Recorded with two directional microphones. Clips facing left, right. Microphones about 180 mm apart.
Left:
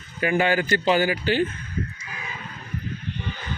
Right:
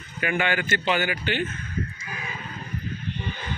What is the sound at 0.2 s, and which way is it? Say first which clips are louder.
Speech: left 4 dB; 35° left (ahead or behind).